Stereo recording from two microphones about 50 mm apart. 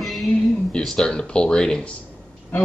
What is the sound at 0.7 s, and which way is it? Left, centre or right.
Speech, centre.